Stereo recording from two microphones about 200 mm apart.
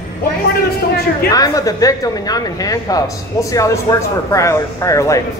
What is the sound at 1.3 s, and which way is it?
A man's voice, 15° left (ahead or behind).